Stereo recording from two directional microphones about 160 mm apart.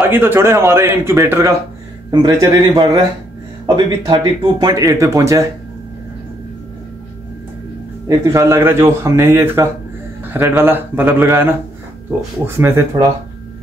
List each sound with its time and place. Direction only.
0.0 s a man's voice: 15° right (ahead or behind)
8.3 s a man's voice: 20° right (ahead or behind)
12.4 s a man's voice: 15° right (ahead or behind)